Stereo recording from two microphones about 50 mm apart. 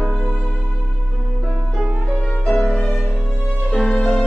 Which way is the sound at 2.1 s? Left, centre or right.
Centre.